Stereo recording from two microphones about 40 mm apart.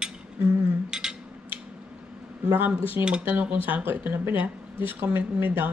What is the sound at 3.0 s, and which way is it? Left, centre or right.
Speech, right.